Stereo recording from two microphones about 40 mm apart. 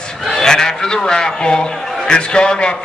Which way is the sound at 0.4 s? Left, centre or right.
Centre.